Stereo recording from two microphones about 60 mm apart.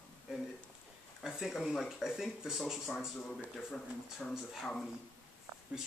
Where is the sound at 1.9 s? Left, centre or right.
Centre.